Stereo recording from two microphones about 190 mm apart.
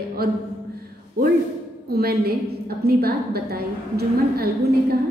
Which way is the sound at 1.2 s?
50° right (ahead or behind).